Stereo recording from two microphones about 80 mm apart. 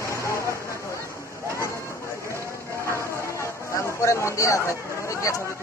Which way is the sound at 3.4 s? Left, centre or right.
Left.